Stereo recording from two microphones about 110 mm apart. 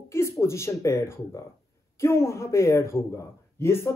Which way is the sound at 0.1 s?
25° left (ahead or behind).